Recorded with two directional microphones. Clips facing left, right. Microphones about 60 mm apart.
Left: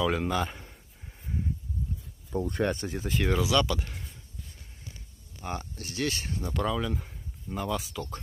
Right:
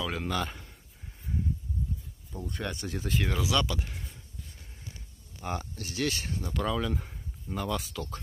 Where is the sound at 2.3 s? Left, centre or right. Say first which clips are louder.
Left 8 dB; left.